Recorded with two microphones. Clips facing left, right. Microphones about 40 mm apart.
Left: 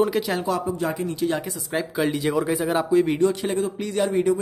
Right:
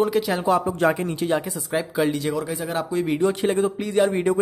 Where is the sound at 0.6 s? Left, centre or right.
Right.